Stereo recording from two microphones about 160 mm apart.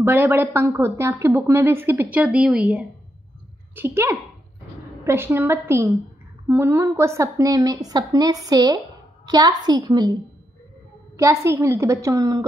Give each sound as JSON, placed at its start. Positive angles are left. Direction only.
{"t": 0.0, "sound": "a woman's voice", "side_deg": -15}
{"t": 11.1, "sound": "a woman's voice", "side_deg": -15}